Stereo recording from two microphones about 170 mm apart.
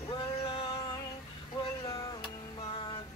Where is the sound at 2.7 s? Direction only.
30° left (ahead or behind).